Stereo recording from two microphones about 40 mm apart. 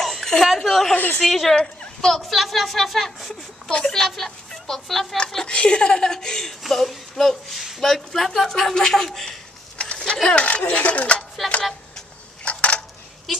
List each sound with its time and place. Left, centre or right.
0.0 s a woman's voice: centre
0.9 s a woman's voice: left
1.2 s speech: centre
2.0 s a woman's voice: centre
2.2 s a woman's voice: centre
5.5 s speech: left; by 9.4 s centre
9.8 s a sound: left
10.2 s speech: left
11.4 s speech: centre
12.4 s dishes: left